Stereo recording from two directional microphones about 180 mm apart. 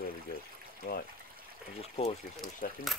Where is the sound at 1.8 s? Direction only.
35° left (ahead or behind).